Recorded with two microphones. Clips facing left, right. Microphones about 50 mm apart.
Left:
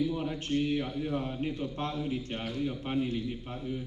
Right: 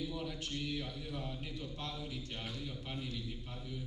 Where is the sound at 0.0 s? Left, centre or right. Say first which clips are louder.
Left 9 dB; left.